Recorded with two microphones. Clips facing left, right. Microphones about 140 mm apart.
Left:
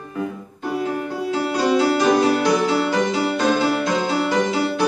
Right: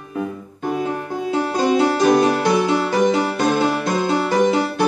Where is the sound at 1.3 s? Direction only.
20° right (ahead or behind).